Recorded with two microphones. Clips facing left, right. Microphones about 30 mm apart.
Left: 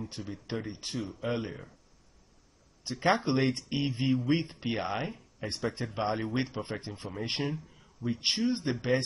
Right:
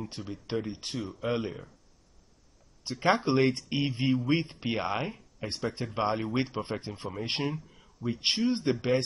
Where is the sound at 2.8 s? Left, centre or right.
Centre.